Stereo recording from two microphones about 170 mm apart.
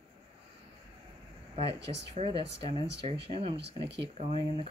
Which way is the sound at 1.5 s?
35° right (ahead or behind).